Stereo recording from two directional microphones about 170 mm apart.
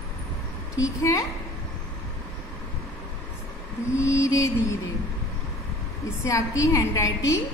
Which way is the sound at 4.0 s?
15° left (ahead or behind).